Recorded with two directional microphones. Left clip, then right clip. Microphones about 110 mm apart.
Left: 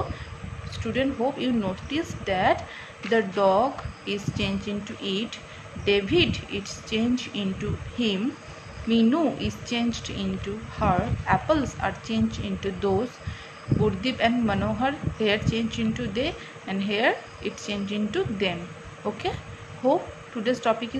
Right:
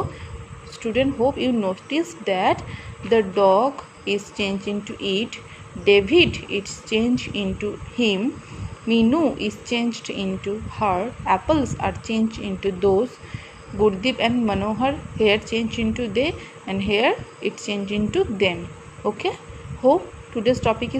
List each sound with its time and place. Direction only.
0.9 s a woman's voice: 40° right (ahead or behind)
14.0 s a woman's voice: 45° right (ahead or behind)
20.4 s a woman's voice: 40° right (ahead or behind)